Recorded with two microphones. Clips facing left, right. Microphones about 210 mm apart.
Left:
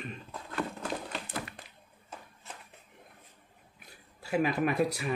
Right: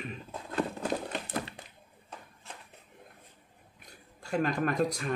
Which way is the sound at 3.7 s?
5° left (ahead or behind).